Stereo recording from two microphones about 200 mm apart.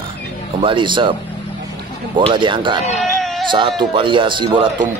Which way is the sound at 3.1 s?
Centre (ahead or behind).